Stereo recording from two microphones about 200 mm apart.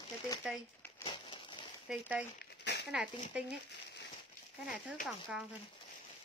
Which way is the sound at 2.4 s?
55° left (ahead or behind).